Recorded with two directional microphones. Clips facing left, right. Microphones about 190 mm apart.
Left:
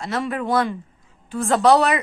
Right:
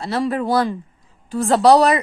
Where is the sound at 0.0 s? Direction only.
35° right (ahead or behind).